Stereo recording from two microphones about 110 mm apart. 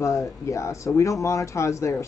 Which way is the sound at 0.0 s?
30° left (ahead or behind).